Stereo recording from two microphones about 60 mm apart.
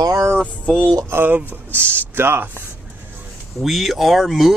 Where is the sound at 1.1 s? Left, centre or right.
Right.